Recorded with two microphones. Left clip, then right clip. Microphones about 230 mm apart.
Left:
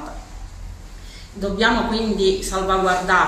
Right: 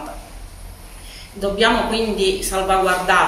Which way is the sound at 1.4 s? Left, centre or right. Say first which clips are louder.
Right 2 dB; centre.